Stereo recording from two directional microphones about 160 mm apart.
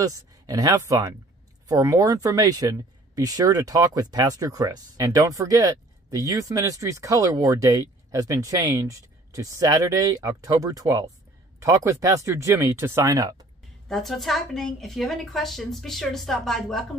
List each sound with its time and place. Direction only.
0.0 s speech: 25° right (ahead or behind)
13.8 s a woman's voice: centre (ahead or behind)